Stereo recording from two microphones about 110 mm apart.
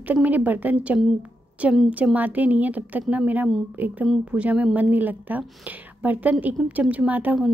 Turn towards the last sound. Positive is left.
turn(degrees=-15)  # may be behind; listen again after turning